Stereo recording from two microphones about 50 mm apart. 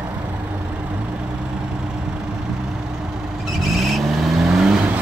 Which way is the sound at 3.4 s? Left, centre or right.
Centre.